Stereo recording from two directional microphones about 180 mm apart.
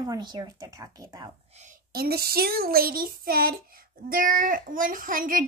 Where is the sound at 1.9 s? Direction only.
60° right (ahead or behind).